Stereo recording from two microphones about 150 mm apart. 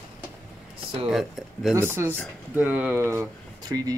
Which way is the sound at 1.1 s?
Centre (ahead or behind).